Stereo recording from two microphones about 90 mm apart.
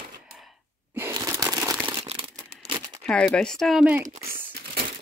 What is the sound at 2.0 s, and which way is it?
Crumpling, 90° right.